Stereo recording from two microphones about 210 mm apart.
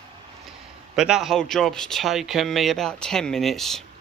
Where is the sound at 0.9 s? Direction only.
5° right (ahead or behind).